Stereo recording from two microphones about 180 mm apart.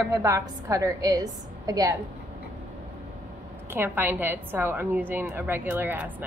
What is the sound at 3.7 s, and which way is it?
A woman's voice, 10° right (ahead or behind).